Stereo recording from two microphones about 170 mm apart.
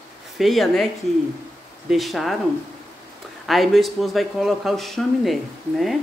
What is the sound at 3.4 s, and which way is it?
Speech, centre (ahead or behind).